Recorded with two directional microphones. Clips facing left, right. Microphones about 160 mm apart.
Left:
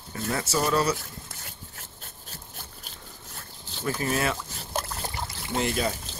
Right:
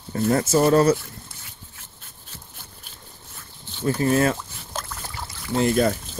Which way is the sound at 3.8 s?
35° right (ahead or behind).